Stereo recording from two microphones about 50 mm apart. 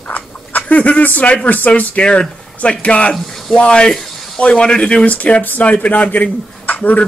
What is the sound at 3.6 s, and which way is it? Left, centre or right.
Speech, centre.